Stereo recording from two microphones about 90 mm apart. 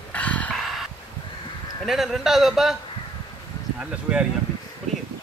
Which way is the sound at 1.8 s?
5° right (ahead or behind).